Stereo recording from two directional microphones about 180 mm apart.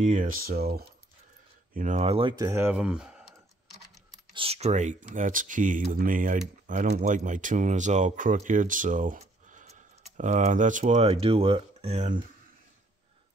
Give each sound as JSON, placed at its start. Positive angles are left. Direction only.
{"t": 0.0, "sound": "speech", "side_deg": -45}
{"t": 1.7, "sound": "speech", "side_deg": -45}
{"t": 2.3, "sound": "speech", "side_deg": -15}
{"t": 4.3, "sound": "speech", "side_deg": -30}